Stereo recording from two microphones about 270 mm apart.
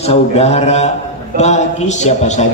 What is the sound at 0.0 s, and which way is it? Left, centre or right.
A man's voice, left.